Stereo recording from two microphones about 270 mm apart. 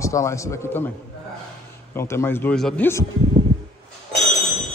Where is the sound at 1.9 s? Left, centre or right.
Centre.